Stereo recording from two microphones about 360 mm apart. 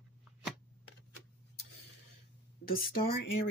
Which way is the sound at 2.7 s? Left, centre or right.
Left.